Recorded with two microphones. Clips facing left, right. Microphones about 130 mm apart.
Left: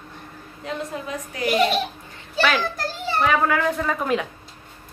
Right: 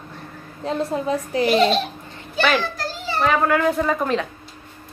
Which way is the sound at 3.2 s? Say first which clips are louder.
Right 3 dB; centre (ahead or behind).